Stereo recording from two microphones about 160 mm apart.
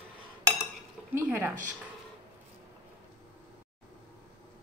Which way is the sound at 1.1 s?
10° right (ahead or behind).